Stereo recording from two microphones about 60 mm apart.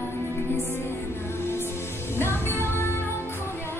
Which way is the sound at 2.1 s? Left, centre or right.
Left.